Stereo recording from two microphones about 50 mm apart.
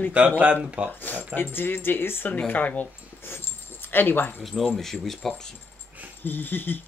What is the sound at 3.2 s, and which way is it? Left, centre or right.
Dog, left.